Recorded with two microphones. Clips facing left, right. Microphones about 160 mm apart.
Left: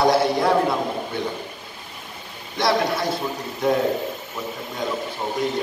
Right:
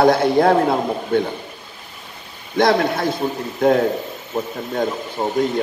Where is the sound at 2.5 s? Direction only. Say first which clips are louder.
Right 5 dB; 55° right (ahead or behind).